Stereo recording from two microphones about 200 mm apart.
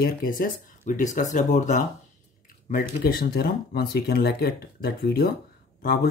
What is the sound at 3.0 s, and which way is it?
Speech, 50° left (ahead or behind).